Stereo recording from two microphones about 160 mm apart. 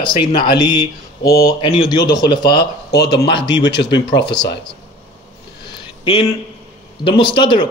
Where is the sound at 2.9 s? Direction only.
90° left.